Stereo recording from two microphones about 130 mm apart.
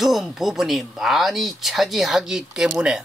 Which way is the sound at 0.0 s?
5° right (ahead or behind).